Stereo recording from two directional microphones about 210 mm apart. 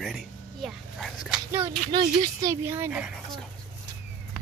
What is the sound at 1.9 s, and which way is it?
Speech, 20° right (ahead or behind).